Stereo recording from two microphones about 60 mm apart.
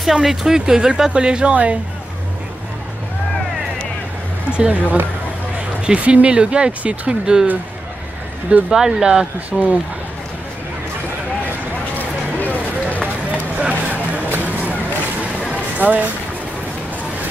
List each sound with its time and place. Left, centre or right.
0.0 s speech: centre; by 1.8 s right
4.5 s speech: right
8.6 s speech: centre
12.0 s a sound: left
13.6 s a sound: right
15.5 s music: right